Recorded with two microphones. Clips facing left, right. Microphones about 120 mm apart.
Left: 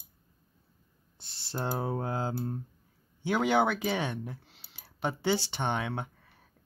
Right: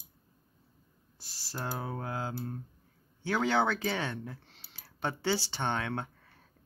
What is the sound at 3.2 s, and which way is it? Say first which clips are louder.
Speech: left 2 dB; 15° left (ahead or behind).